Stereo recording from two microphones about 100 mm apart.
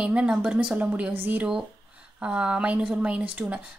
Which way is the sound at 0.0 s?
10° right (ahead or behind).